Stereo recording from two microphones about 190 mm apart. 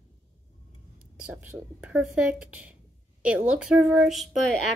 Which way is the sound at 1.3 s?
10° right (ahead or behind).